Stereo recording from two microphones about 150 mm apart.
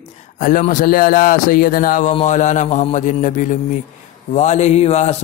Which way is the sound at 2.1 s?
50° left (ahead or behind).